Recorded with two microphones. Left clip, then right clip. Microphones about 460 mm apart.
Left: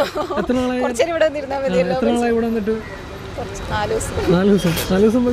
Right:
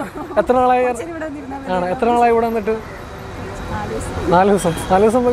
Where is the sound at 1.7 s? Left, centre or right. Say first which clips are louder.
Right 2 dB; right.